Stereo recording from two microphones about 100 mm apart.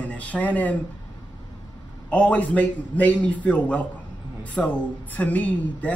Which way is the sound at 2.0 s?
15° left (ahead or behind).